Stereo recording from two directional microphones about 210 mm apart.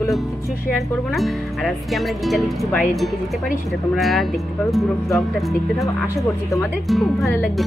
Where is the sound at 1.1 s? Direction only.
Centre (ahead or behind).